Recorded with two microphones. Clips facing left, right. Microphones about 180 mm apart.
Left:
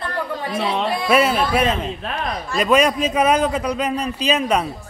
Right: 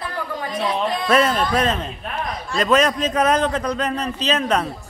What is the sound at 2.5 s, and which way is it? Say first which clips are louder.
A man's voice: left 1 dB; 10° left (ahead or behind).